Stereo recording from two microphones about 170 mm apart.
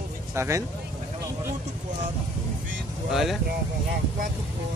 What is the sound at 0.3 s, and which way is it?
Speech, 15° right (ahead or behind).